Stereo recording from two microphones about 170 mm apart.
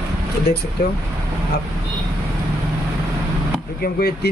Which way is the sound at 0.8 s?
65° left (ahead or behind).